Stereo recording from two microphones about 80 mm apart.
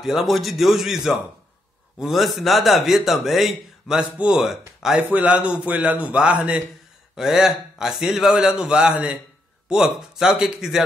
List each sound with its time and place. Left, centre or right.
0.0 s a man's voice: centre
4.9 s a man's voice: centre